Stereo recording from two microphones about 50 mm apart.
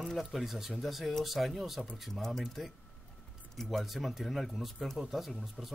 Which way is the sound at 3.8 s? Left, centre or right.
Centre.